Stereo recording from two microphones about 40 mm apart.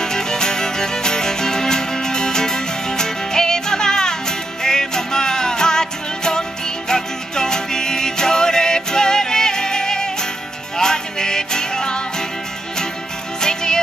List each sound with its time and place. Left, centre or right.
0.0 s music: centre
13.4 s music: centre